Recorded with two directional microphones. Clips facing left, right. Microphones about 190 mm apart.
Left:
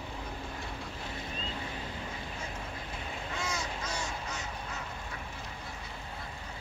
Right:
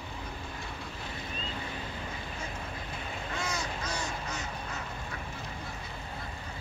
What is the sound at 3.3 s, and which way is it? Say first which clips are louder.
Crow: right 1 dB; 5° left (ahead or behind).